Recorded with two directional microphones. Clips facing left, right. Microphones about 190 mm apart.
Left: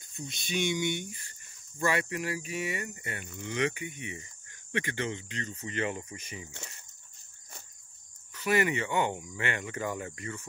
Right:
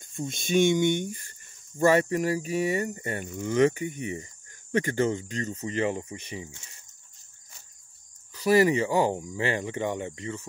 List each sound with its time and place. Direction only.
0.0 s speech: 50° right (ahead or behind); by 6.5 s 30° right (ahead or behind)
8.3 s speech: 35° right (ahead or behind)